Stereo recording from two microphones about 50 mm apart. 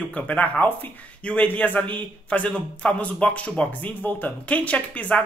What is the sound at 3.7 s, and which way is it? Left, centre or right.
Speech, left.